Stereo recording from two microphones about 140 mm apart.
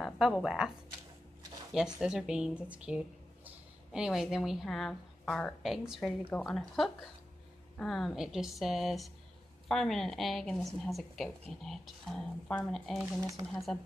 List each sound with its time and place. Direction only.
0.0 s a woman's voice: centre (ahead or behind)
2.0 s a woman's voice: 5° right (ahead or behind)
13.2 s speech: 20° right (ahead or behind)